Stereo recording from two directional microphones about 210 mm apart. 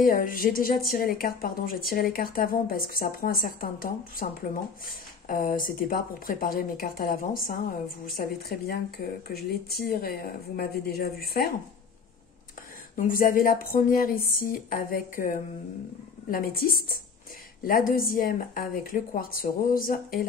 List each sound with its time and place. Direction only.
0.0 s a woman's voice: 40° left (ahead or behind)
5.3 s a woman's voice: 40° left (ahead or behind)
12.9 s a woman's voice: 40° left (ahead or behind)